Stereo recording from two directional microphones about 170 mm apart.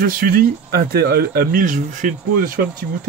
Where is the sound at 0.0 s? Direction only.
60° right (ahead or behind).